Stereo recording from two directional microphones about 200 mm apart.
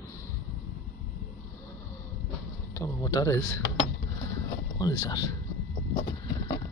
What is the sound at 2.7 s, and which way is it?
Speech, 15° left (ahead or behind).